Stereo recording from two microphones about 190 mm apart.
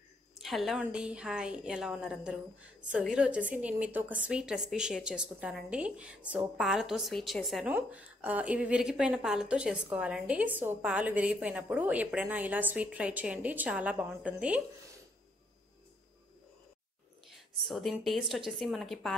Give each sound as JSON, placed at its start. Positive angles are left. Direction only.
{"t": 0.4, "sound": "a woman's voice", "side_deg": 0}
{"t": 17.6, "sound": "a woman's voice", "side_deg": 0}